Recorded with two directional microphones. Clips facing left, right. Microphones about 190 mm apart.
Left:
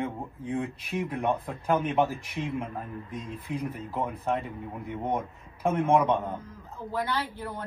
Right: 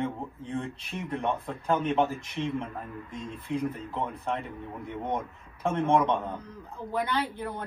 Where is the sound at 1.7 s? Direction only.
Centre (ahead or behind).